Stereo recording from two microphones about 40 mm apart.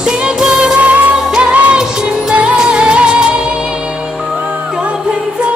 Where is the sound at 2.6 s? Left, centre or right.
Right.